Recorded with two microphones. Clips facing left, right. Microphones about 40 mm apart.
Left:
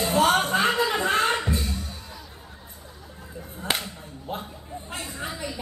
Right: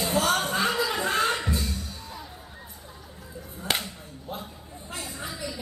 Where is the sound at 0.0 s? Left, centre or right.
Left.